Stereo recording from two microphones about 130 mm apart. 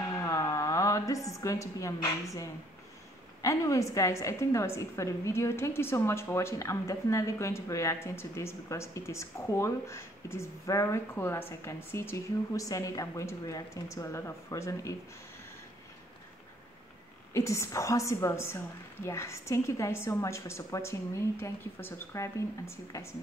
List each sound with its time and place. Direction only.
0.0 s a sound: 25° left (ahead or behind)
3.4 s a woman's voice: 25° left (ahead or behind)
17.3 s a woman's voice: 25° left (ahead or behind)